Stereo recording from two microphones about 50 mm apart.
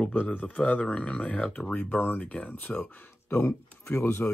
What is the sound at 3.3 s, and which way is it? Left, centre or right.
Speech, left.